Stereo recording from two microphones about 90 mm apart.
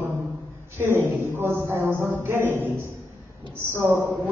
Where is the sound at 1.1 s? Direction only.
25° right (ahead or behind).